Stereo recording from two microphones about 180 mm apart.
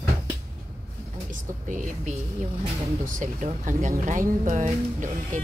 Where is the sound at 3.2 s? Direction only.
45° right (ahead or behind).